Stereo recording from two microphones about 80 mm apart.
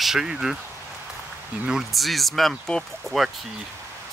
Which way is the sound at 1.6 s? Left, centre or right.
Centre.